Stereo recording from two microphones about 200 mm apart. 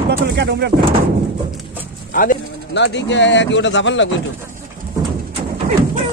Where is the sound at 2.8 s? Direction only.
65° left (ahead or behind).